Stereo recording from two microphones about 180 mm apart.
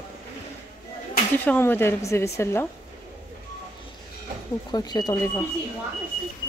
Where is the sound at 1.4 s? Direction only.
10° left (ahead or behind).